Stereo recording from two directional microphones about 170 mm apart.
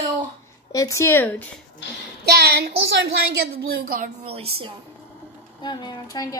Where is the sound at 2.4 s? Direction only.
70° right (ahead or behind).